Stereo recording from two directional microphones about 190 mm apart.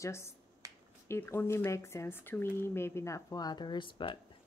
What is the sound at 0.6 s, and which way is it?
Finger snapping, 15° right (ahead or behind).